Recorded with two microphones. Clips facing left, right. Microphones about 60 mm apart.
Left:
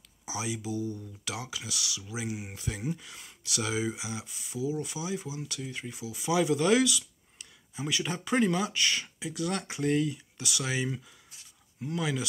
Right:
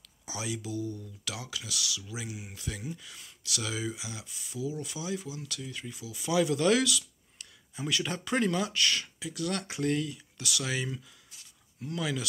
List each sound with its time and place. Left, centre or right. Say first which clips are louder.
0.2 s speech: left 2 dB; centre